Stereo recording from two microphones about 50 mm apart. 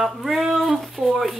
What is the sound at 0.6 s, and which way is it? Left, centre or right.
Speech, centre.